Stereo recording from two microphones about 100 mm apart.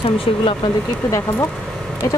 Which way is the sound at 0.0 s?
65° left (ahead or behind).